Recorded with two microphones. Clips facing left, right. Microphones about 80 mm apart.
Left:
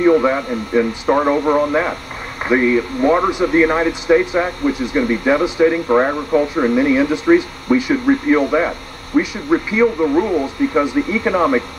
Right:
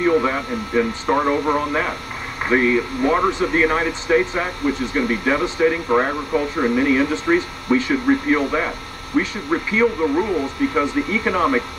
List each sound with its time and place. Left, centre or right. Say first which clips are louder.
0.0 s speech: left 5 dB; centre